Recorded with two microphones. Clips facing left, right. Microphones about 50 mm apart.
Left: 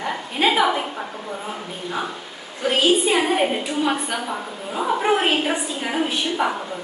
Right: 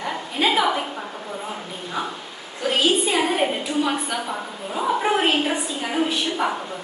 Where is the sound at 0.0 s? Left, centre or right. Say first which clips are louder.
Left 2 dB; centre.